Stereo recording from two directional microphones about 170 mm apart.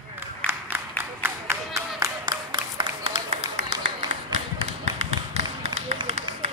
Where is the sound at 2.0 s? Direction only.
25° right (ahead or behind); by 3.7 s 40° right (ahead or behind).